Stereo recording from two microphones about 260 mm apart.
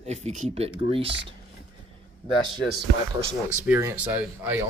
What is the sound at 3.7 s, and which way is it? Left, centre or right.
Speech, centre.